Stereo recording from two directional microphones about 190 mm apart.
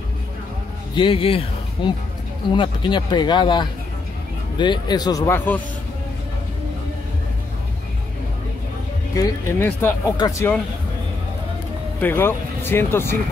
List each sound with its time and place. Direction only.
0.9 s speech: 25° left (ahead or behind); by 5.6 s 10° left (ahead or behind)
9.1 s speech: 10° left (ahead or behind)
12.0 s speech: 10° left (ahead or behind)